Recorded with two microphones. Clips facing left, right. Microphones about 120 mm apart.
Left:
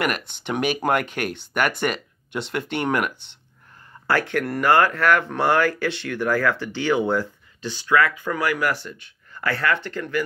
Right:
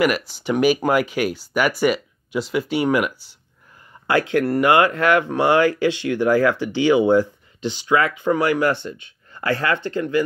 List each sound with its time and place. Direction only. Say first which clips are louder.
0.0 s speech: right 6 dB; 5° right (ahead or behind); by 10.2 s 20° right (ahead or behind)